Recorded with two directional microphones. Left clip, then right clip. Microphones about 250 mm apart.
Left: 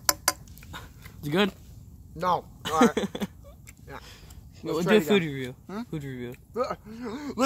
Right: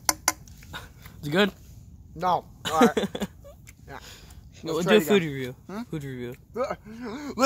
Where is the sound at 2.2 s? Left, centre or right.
Centre.